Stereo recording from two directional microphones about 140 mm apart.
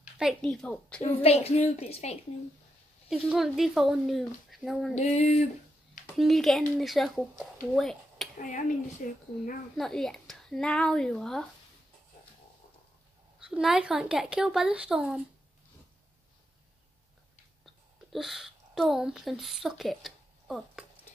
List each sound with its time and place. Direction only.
0.2 s speech: centre (ahead or behind)
1.1 s a woman's voice: 45° left (ahead or behind)
3.1 s speech: centre (ahead or behind)
4.9 s a woman's voice: 50° left (ahead or behind)
6.1 s speech: centre (ahead or behind)
9.8 s speech: 5° left (ahead or behind)
13.4 s speech: 5° right (ahead or behind)
18.1 s a woman's voice: centre (ahead or behind)